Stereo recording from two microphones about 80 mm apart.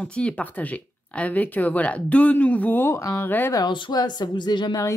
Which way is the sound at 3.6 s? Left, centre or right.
Left.